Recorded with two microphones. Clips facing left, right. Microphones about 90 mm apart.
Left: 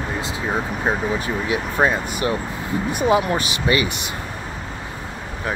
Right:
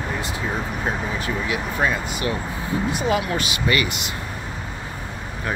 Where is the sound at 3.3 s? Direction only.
25° left (ahead or behind).